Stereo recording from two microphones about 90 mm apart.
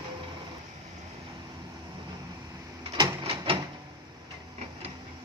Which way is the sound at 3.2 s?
80° right.